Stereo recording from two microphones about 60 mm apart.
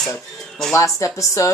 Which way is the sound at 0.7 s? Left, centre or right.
Left.